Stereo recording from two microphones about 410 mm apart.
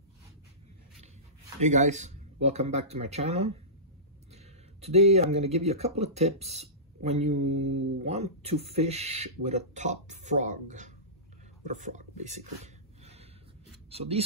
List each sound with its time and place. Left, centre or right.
1.6 s speech: centre
4.8 s speech: centre
7.4 s mantra: right
8.0 s speech: centre
11.6 s a sound: centre
13.8 s speech: centre